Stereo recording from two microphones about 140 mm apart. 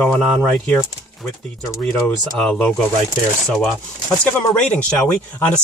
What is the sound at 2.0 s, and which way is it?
Speech, 5° left (ahead or behind).